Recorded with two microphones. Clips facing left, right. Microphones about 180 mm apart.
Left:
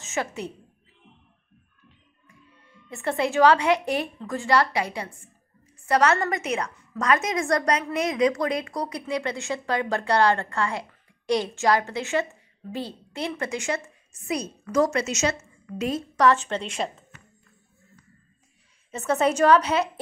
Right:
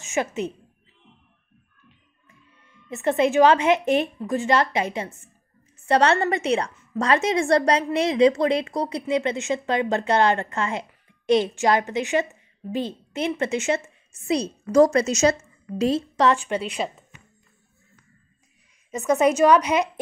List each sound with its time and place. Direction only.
0.0 s a woman's voice: 20° right (ahead or behind)
2.9 s a woman's voice: 20° right (ahead or behind)
16.3 s a woman's voice: 10° right (ahead or behind)
18.9 s a woman's voice: 10° right (ahead or behind)